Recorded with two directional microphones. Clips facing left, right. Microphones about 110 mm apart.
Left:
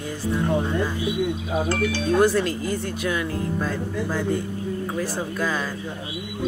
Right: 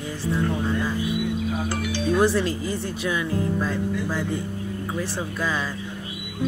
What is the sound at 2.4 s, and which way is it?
Speech, 30° right (ahead or behind).